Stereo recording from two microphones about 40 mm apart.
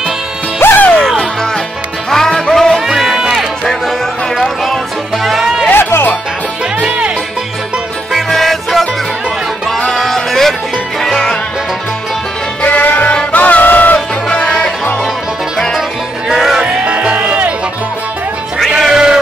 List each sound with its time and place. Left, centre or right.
0.6 s music: left
0.9 s music: centre
2.9 s run: centre
5.2 s music: centre
5.7 s music: left
8.3 s music: centre
9.9 s music: centre
12.6 s music: left
14.3 s music: left
16.3 s music: centre
16.6 s music: right
18.9 s a sound: centre